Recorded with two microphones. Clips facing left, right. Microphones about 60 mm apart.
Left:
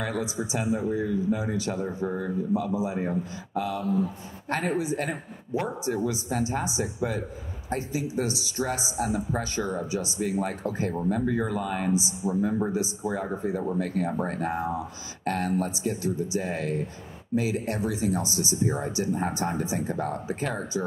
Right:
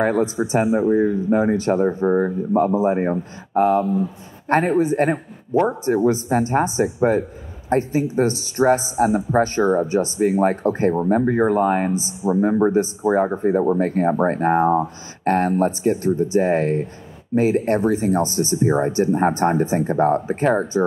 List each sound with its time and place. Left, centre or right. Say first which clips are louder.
0.0 s a man's voice: right 11 dB; right